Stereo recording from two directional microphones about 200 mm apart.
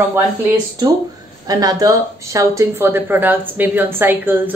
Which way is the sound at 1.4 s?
20° right (ahead or behind).